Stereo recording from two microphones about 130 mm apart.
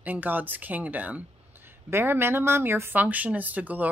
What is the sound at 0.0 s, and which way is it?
Speech, 15° right (ahead or behind).